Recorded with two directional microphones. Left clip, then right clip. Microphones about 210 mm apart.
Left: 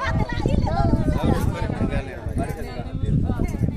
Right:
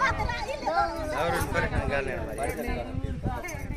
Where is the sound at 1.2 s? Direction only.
20° right (ahead or behind).